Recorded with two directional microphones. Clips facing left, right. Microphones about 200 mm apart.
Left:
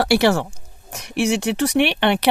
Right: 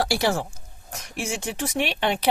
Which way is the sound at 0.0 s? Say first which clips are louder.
Left 7 dB; 65° left (ahead or behind).